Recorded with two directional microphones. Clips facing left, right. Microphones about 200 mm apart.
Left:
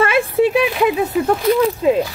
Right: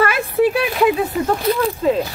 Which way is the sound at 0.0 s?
25° left (ahead or behind).